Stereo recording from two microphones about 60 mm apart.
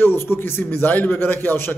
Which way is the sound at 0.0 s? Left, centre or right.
Left.